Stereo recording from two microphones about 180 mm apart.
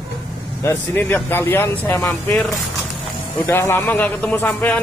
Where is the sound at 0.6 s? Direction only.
15° left (ahead or behind).